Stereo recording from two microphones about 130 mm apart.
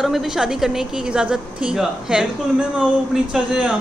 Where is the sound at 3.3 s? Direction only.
5° right (ahead or behind).